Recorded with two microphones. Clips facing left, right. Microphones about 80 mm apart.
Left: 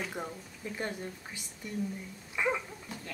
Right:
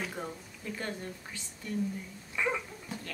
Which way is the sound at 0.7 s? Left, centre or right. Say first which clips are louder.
Left 1 dB; centre.